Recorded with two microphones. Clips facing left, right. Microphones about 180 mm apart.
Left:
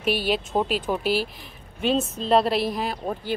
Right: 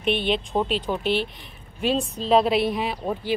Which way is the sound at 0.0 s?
5° left (ahead or behind).